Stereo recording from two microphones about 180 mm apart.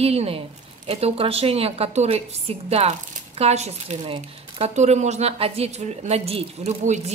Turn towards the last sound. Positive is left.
turn(degrees=-40)  # may be behind; listen again after turning